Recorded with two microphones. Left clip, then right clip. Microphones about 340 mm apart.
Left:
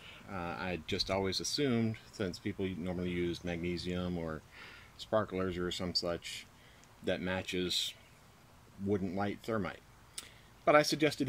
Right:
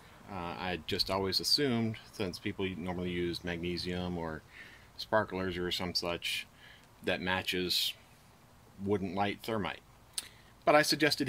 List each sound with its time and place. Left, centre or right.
0.3 s speech: right
9.1 s speech: right